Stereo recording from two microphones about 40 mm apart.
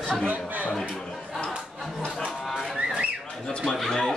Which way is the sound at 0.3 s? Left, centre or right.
Right.